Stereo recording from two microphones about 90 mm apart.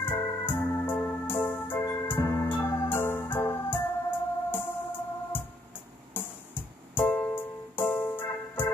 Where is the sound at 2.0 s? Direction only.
25° left (ahead or behind).